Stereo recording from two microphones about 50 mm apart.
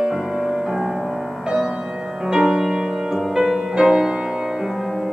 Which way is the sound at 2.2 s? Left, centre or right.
Centre.